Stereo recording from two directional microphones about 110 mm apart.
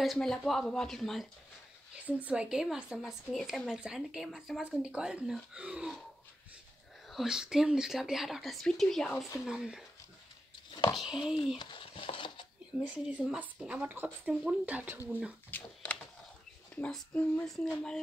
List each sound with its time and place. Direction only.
0.0 s speech: centre (ahead or behind)
2.0 s speech: 15° right (ahead or behind)
7.1 s speech: 5° right (ahead or behind)
10.7 s a sound: 40° left (ahead or behind)
11.0 s speech: 5° right (ahead or behind)
11.5 s a sound: 45° left (ahead or behind)
12.7 s speech: 5° right (ahead or behind)
15.5 s a child's voice: 15° left (ahead or behind)